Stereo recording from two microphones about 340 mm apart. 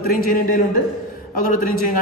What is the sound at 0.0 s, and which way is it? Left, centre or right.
Speech, left.